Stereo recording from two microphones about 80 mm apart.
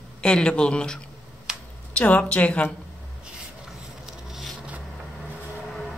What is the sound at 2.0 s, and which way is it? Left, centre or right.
Speech, centre.